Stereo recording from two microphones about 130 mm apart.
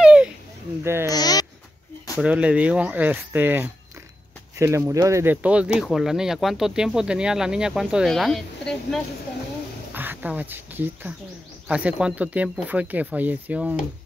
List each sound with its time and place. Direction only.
0.0 s a sound: 10° right (ahead or behind)
0.8 s speech: 20° right (ahead or behind)
1.1 s babbling: 30° left (ahead or behind)
2.1 s speech: 10° right (ahead or behind)
9.9 s speech: 15° right (ahead or behind)